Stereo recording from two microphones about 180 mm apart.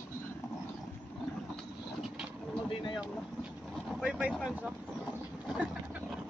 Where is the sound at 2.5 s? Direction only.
25° left (ahead or behind).